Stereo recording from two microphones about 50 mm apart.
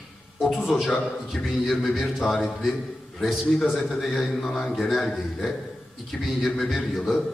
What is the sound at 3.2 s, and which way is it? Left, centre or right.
A man's voice, centre.